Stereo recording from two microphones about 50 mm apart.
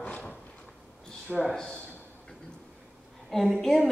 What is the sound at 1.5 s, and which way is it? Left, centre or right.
Speech, centre.